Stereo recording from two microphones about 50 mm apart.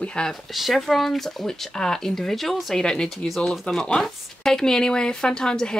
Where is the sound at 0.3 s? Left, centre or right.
Centre.